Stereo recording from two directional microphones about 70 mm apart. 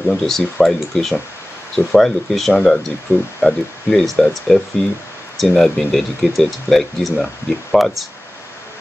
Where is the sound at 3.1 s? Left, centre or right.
Left.